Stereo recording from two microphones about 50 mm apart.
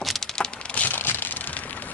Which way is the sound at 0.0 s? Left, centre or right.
Centre.